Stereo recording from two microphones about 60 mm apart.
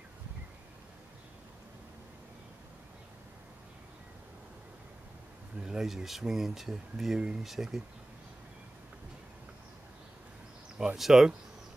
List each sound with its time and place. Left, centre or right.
5.6 s speech: centre
11.0 s speech: centre